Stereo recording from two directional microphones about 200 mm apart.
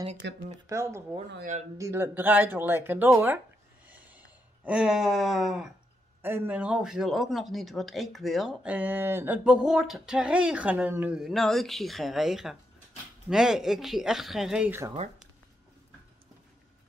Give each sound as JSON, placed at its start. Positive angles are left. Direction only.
{"t": 0.2, "sound": "speech", "side_deg": -60}
{"t": 0.7, "sound": "speech", "side_deg": -15}
{"t": 1.4, "sound": "speech", "side_deg": -35}
{"t": 1.8, "sound": "speech", "side_deg": -10}
{"t": 3.8, "sound": "a sound", "side_deg": -10}
{"t": 6.2, "sound": "speech", "side_deg": -10}